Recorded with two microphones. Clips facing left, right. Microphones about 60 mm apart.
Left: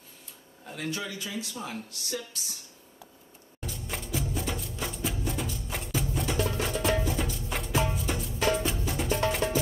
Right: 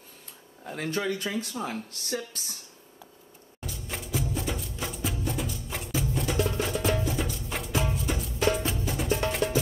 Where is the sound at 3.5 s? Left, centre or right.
Centre.